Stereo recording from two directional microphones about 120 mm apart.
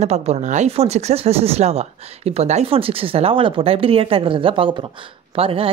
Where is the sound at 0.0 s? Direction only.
65° right (ahead or behind).